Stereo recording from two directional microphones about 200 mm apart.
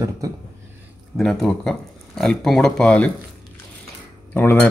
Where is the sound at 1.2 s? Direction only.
5° left (ahead or behind).